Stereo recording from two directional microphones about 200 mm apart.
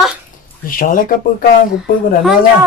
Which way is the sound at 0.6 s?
45° left (ahead or behind).